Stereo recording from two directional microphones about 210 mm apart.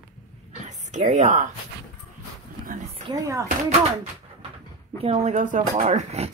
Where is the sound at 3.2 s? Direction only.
15° right (ahead or behind).